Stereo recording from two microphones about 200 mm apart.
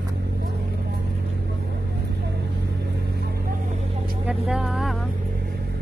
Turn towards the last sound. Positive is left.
turn(degrees=0)  # may be behind; listen again after turning